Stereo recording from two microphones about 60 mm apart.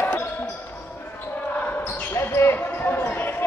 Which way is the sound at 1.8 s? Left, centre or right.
Left.